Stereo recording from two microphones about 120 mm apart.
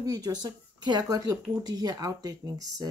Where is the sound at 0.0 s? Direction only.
30° right (ahead or behind).